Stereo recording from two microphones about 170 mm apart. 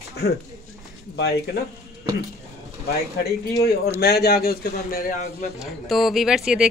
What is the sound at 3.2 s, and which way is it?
Speech, 20° left (ahead or behind).